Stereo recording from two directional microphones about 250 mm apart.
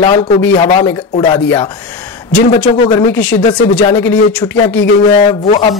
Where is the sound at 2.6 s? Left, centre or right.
Left.